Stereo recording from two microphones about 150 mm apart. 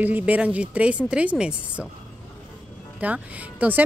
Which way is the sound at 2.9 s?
10° right (ahead or behind).